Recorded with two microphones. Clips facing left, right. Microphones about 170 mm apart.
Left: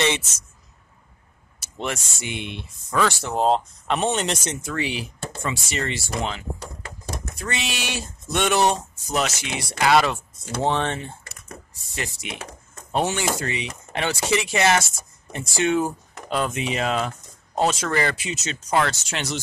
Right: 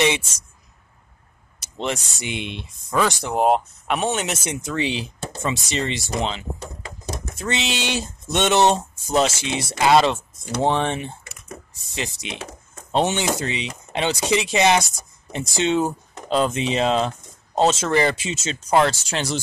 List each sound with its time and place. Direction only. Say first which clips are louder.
0.0 s speech: right 3 dB; 10° right (ahead or behind)
1.6 s speech: right 3 dB; 20° right (ahead or behind)
3.9 s speech: even; centre (ahead or behind); by 19.4 s 35° right (ahead or behind)